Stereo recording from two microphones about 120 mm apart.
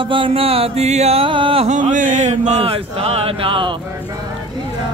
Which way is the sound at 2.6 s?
50° right (ahead or behind).